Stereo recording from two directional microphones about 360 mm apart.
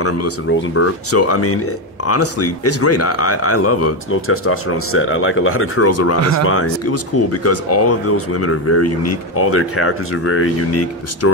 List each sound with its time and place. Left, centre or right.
0.0 s speech: left